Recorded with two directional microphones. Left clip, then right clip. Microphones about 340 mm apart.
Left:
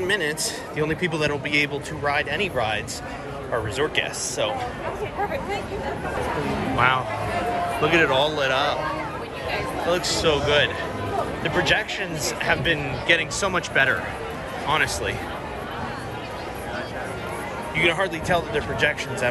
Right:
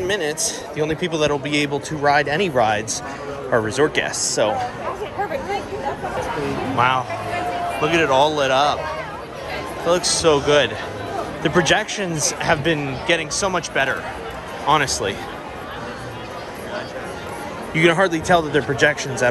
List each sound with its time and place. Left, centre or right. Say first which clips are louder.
0.0 s a man's voice: right 2 dB; centre
7.8 s a man's voice: right 3 dB; centre
9.8 s a man's voice: right 6 dB; centre
17.7 s speech: right 6 dB; right